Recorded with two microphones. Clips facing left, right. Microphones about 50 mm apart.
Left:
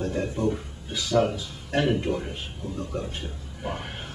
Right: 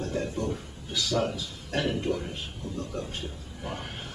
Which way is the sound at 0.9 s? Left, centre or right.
Centre.